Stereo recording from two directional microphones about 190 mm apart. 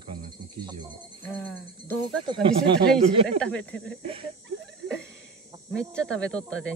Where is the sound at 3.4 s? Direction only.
5° left (ahead or behind).